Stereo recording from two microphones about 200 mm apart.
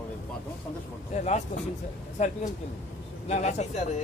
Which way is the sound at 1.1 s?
35° left (ahead or behind).